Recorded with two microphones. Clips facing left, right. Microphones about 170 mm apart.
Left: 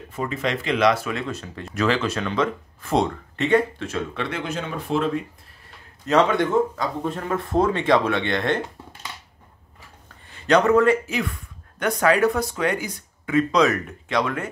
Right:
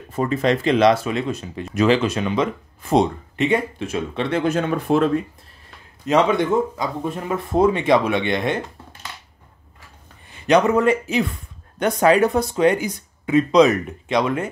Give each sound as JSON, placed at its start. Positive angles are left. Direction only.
{"t": 0.1, "sound": "speech", "side_deg": -40}
{"t": 4.4, "sound": "speech", "side_deg": -50}
{"t": 6.0, "sound": "speech", "side_deg": -15}
{"t": 10.3, "sound": "speech", "side_deg": -15}